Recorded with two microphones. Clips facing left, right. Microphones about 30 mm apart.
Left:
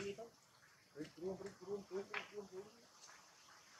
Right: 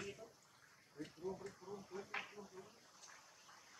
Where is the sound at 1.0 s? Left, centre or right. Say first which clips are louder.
Left 1 dB; left.